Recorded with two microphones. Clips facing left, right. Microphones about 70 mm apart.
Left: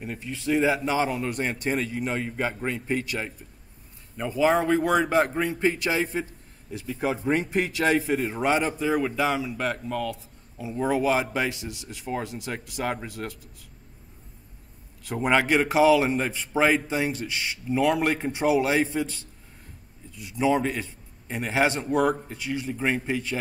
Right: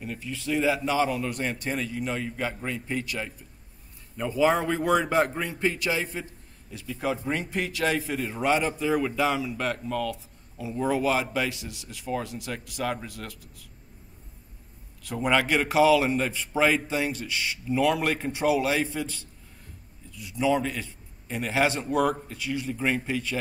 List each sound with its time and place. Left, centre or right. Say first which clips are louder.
0.0 s a man's voice: left 2 dB; centre
4.2 s a man's voice: left 1 dB; centre
6.7 s a man's voice: left 2 dB; left
15.0 s a man's voice: left 2 dB; left
20.3 s a man's voice: left 2 dB; left